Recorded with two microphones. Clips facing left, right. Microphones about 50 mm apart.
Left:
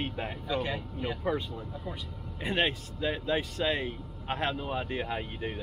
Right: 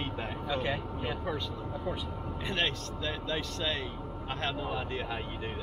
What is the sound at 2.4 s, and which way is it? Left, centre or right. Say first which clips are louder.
Speech: left 4 dB; centre.